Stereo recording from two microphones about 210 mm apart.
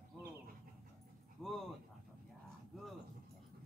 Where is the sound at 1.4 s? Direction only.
Centre (ahead or behind).